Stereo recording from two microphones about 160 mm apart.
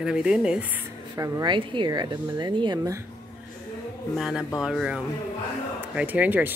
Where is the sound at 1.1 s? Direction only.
20° right (ahead or behind).